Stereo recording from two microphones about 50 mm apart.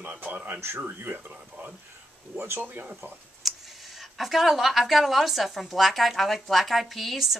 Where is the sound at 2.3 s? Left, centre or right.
Right.